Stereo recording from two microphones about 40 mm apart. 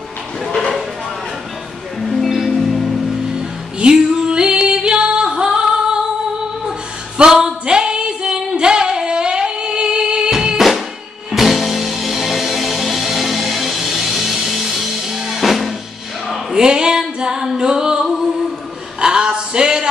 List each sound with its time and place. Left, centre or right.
2.0 s music: centre
3.8 s female singing: centre
7.2 s female singing: centre
10.6 s music: centre
16.3 s a sound: centre
17.2 s singing: centre
18.9 s a sound: centre